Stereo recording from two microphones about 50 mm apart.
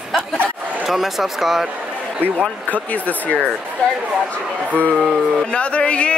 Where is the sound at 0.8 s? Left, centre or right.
Centre.